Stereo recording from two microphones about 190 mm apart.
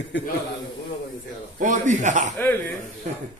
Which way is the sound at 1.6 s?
40° right (ahead or behind).